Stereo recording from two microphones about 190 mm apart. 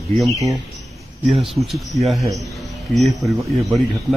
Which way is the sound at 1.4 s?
Centre (ahead or behind).